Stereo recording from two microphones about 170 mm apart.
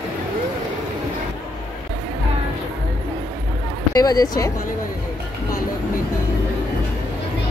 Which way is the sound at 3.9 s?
20° left (ahead or behind).